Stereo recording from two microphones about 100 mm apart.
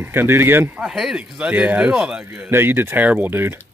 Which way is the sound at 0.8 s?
5° right (ahead or behind).